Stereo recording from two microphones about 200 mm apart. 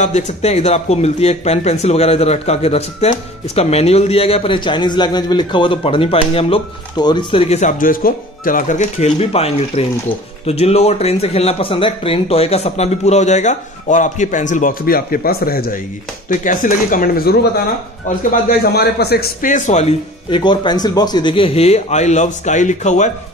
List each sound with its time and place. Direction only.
0.0 s speech: 35° left (ahead or behind)